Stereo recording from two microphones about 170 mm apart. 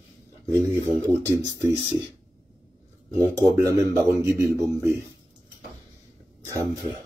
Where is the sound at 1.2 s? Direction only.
20° right (ahead or behind).